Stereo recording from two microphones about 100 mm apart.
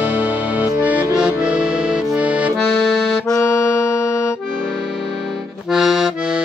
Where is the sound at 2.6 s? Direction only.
Centre (ahead or behind).